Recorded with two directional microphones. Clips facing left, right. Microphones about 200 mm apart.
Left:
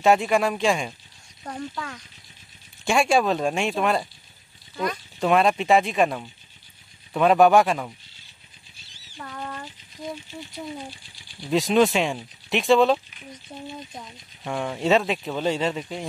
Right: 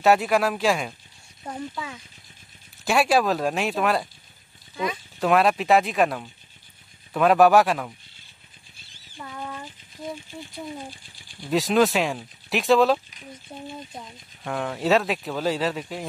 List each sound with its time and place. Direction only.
0.0 s speech: 5° right (ahead or behind)
8.7 s a sound: 55° right (ahead or behind)
9.2 s speech: 5° right (ahead or behind)
14.4 s speech: centre (ahead or behind)